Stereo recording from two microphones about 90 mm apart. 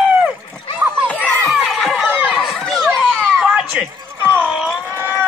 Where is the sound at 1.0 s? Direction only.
15° left (ahead or behind).